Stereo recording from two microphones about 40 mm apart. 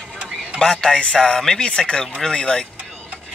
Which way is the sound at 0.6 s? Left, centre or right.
Centre.